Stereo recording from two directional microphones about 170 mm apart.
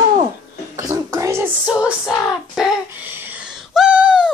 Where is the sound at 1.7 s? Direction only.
5° right (ahead or behind).